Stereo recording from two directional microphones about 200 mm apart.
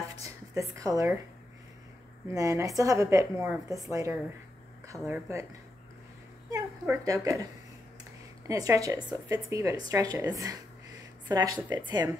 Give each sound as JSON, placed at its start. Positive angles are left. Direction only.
{"t": 0.2, "sound": "a woman's voice", "side_deg": -15}
{"t": 2.3, "sound": "a woman's voice", "side_deg": -15}
{"t": 4.8, "sound": "a sound", "side_deg": -15}
{"t": 5.1, "sound": "a woman's voice", "side_deg": -15}
{"t": 6.5, "sound": "a woman's voice", "side_deg": -15}
{"t": 8.5, "sound": "a woman's voice", "side_deg": -15}